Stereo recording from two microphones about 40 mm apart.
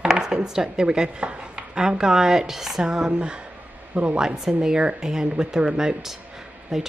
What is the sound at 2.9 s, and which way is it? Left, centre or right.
Speech, right.